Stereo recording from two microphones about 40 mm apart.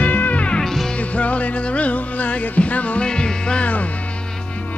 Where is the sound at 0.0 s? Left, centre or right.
Left.